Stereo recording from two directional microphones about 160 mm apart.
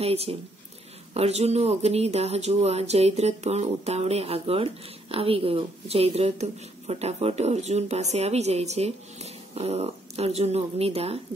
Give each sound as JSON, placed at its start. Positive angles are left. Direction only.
{"t": 0.0, "sound": "a woman's voice", "side_deg": -40}